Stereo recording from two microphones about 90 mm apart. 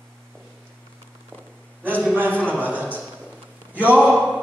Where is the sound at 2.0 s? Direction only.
20° right (ahead or behind).